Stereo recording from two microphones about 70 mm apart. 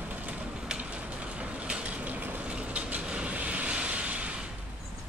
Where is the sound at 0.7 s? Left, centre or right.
Centre.